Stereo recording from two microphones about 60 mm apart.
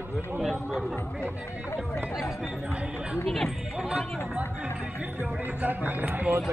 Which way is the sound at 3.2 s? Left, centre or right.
Centre.